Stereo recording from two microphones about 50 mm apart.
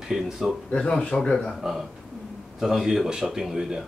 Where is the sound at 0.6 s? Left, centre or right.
Left.